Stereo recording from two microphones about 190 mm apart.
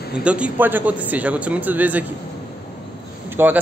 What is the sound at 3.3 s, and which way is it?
Vehicle, 10° right (ahead or behind).